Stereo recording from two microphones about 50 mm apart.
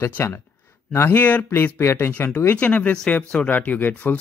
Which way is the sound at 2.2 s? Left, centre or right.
Left.